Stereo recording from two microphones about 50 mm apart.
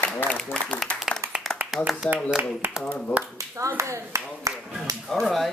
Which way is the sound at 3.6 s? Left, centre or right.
Right.